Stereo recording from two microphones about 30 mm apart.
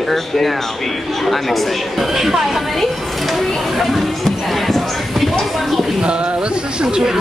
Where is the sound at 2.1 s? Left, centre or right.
Centre.